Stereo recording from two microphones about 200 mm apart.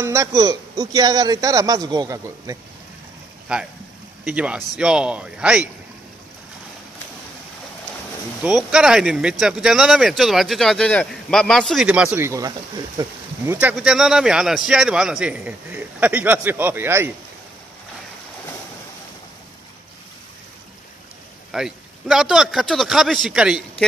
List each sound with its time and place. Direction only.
0.0 s speech: 15° right (ahead or behind)
3.5 s speech: 5° right (ahead or behind)
8.4 s speech: centre (ahead or behind)
21.5 s speech: 5° right (ahead or behind)